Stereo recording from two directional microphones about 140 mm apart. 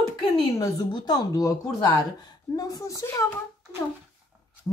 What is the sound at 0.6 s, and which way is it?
Speech, 25° left (ahead or behind).